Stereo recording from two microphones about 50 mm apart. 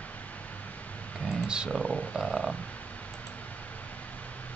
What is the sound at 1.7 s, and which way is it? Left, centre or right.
Speech, left.